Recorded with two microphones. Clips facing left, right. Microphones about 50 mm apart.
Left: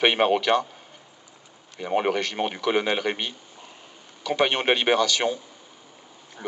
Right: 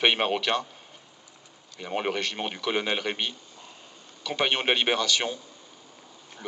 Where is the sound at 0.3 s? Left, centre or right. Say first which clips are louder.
Left 6 dB; centre.